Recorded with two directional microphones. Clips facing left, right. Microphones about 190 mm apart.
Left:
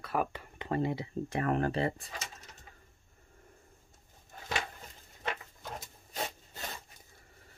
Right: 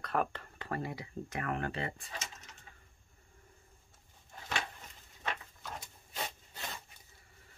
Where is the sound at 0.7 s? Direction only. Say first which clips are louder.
Left 7 dB; 25° left (ahead or behind).